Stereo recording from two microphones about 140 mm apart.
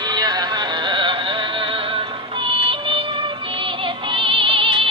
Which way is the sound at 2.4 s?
40° right (ahead or behind).